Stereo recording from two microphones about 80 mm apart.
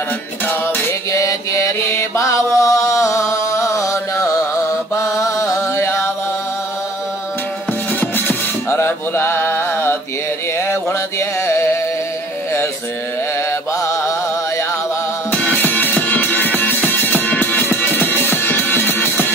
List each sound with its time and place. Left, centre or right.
0.5 s music: left
1.1 s mantra: left
8.0 s music: left
10.7 s a sound: left
13.5 s mantra: left
15.3 s music: centre